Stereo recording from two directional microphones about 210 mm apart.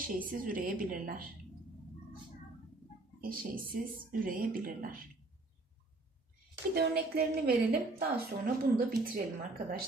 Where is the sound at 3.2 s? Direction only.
40° right (ahead or behind).